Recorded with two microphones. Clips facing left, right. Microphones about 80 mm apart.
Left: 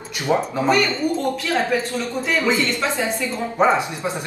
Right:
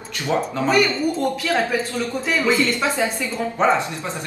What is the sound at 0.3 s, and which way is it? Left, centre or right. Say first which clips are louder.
Speech: left 2 dB; centre.